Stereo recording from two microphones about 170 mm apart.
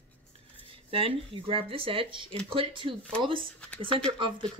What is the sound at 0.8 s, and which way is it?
Speech, 35° right (ahead or behind).